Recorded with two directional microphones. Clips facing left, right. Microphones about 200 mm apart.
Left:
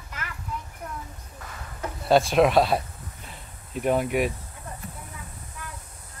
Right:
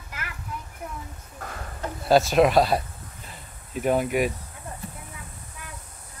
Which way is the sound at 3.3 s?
Centre (ahead or behind).